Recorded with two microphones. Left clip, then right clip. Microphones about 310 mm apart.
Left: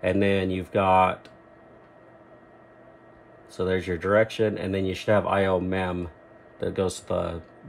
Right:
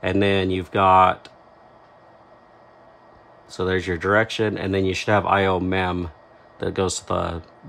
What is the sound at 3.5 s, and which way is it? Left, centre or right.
Speech, centre.